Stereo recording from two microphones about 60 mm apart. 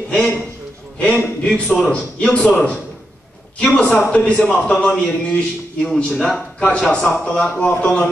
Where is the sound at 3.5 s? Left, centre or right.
Left; by 6.4 s centre.